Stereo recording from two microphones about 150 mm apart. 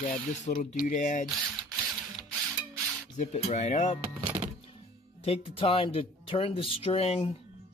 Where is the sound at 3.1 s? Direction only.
50° left (ahead or behind).